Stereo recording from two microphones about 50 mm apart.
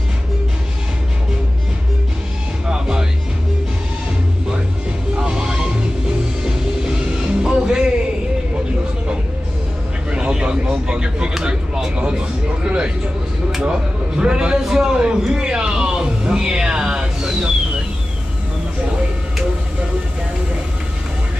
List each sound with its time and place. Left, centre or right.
2.7 s music: centre
5.1 s music: centre
10.1 s a sound: centre